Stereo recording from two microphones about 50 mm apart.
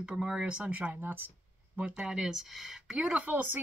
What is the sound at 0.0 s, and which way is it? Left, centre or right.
A woman's voice, centre.